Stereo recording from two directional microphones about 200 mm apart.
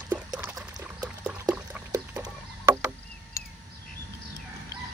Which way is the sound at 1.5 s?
10° right (ahead or behind).